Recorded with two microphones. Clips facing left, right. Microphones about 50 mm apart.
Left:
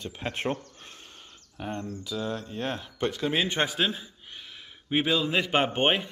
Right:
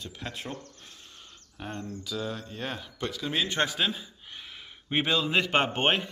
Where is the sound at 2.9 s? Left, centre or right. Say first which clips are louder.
Left 4 dB; left.